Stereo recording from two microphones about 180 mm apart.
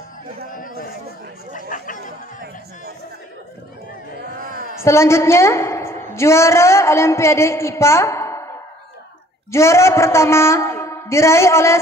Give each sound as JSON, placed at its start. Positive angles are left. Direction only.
{"t": 0.5, "sound": "a sound", "side_deg": 50}
{"t": 1.5, "sound": "speech", "side_deg": 45}
{"t": 4.8, "sound": "a woman's voice", "side_deg": 15}
{"t": 9.5, "sound": "a man's voice", "side_deg": 15}